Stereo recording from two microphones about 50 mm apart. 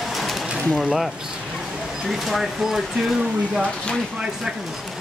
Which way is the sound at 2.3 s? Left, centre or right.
Centre.